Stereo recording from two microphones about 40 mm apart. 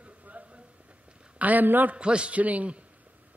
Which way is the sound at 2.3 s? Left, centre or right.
Right.